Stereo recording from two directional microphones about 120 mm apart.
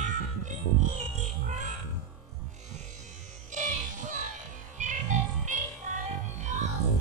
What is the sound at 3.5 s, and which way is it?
Music, 90° right.